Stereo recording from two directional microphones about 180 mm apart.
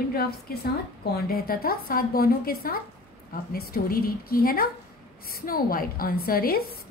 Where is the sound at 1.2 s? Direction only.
55° left (ahead or behind).